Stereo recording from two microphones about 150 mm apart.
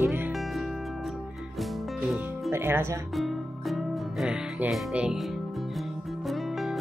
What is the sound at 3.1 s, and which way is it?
Music, centre (ahead or behind).